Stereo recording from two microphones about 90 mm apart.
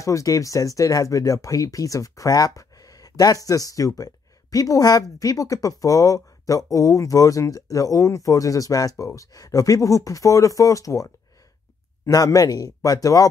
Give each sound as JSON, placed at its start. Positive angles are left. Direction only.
{"t": 0.0, "sound": "speech", "side_deg": 35}
{"t": 12.1, "sound": "speech", "side_deg": 45}